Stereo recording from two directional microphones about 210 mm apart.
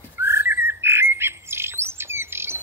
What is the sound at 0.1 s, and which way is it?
Bird, 10° right (ahead or behind).